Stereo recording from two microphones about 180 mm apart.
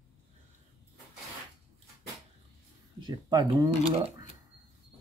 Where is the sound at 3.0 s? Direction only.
25° right (ahead or behind).